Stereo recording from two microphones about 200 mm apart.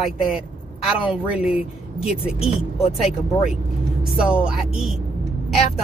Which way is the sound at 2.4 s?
30° left (ahead or behind).